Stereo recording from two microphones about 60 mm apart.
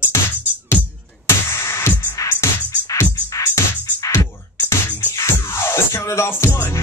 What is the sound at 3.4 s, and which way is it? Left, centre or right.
Music, left.